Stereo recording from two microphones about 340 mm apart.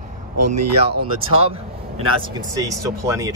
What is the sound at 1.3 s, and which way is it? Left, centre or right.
Speech, centre.